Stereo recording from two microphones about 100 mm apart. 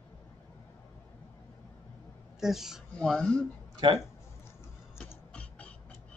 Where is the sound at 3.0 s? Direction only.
10° left (ahead or behind).